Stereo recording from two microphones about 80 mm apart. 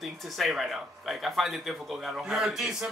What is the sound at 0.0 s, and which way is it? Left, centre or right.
Speech, centre.